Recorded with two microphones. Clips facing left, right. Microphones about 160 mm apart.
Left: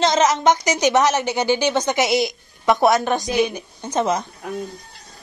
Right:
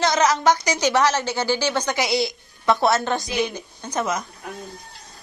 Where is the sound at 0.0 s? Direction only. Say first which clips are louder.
Left 2 dB; 20° left (ahead or behind).